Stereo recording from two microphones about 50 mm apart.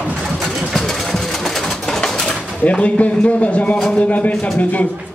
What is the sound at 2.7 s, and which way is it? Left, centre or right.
A man's voice, left.